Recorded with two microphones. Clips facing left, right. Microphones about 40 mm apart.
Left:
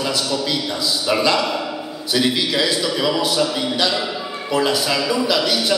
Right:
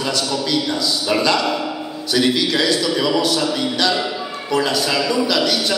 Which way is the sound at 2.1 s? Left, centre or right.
Centre.